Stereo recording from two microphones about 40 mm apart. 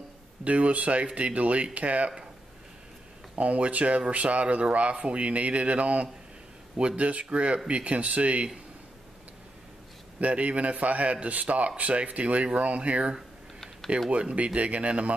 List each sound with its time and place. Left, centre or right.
0.4 s a man's voice: right
3.3 s a man's voice: right
7.2 s a man's voice: right
10.2 s a man's voice: right